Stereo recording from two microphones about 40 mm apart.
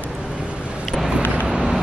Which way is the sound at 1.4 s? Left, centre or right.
Centre.